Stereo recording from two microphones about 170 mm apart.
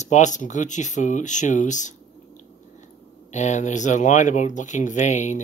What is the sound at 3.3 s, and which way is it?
A man's voice, 45° left (ahead or behind).